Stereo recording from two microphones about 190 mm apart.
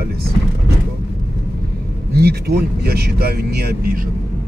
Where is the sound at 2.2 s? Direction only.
55° right (ahead or behind).